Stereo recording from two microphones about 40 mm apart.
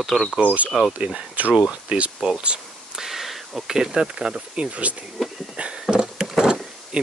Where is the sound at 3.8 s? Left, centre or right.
Centre.